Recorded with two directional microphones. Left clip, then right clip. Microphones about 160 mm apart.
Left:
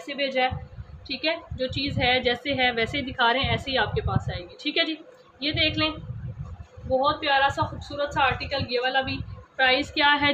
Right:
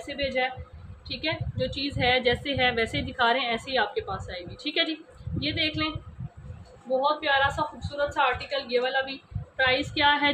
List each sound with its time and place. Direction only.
0.0 s a woman's voice: 10° left (ahead or behind)
7.0 s a woman's voice: 20° left (ahead or behind)